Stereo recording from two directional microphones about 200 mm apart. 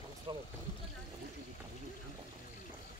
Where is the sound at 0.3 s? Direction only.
25° right (ahead or behind).